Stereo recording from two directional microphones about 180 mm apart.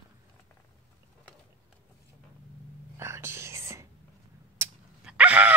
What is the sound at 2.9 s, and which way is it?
Whispering, 15° right (ahead or behind).